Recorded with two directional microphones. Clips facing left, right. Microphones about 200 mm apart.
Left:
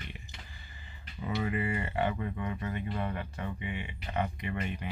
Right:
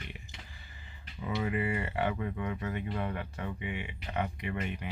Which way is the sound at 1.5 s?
5° right (ahead or behind).